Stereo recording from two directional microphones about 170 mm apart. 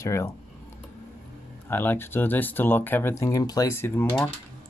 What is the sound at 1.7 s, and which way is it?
Speech, 10° left (ahead or behind).